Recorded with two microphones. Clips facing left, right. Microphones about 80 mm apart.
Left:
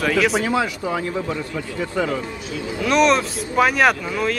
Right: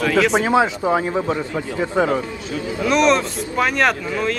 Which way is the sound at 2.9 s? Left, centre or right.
Centre.